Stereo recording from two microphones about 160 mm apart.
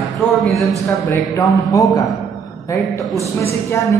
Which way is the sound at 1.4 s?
20° left (ahead or behind).